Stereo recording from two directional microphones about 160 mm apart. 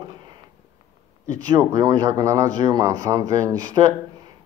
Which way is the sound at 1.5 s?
25° right (ahead or behind).